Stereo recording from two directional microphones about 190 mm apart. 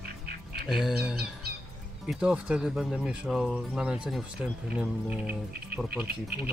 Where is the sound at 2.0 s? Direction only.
5° right (ahead or behind).